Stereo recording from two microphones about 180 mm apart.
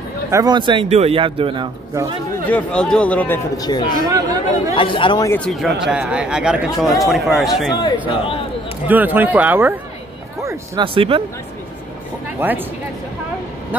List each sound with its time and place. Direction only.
0.3 s a man's voice: 20° right (ahead or behind)
2.4 s speech: 5° left (ahead or behind)
3.5 s speech: 20° left (ahead or behind)
4.1 s a man's voice: 20° right (ahead or behind)
4.7 s speech: 30° left (ahead or behind)
5.3 s speech: 5° left (ahead or behind)
8.1 s speech: 30° left (ahead or behind)
8.8 s speech: 10° right (ahead or behind)
10.8 s a man's voice: 30° right (ahead or behind)
12.4 s speech: 10° right (ahead or behind)